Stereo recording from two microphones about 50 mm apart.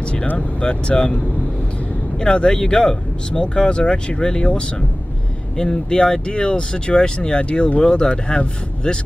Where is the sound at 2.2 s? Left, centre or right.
Centre.